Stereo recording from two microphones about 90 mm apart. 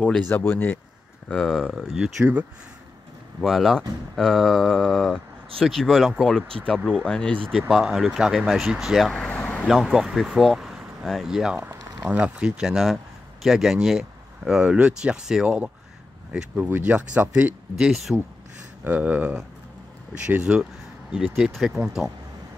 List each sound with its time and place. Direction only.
0.3 s speech: 25° left (ahead or behind)
1.3 s speech: 5° left (ahead or behind)
3.3 s speech: centre (ahead or behind)
7.7 s speech: centre (ahead or behind)
9.1 s vehicle: 10° left (ahead or behind)
9.7 s speech: 5° right (ahead or behind)
11.6 s speech: 20° right (ahead or behind); by 18.1 s 5° right (ahead or behind)
18.9 s speech: 15° right (ahead or behind)
21.1 s speech: centre (ahead or behind)